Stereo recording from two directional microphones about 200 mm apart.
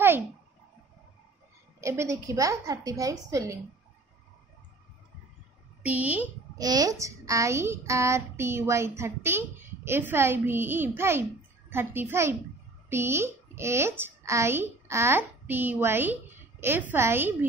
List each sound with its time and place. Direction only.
1.8 s a woman's voice: 15° right (ahead or behind)
5.8 s a woman's voice: 10° right (ahead or behind)